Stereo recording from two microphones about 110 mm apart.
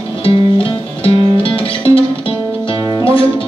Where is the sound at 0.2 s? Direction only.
55° left (ahead or behind).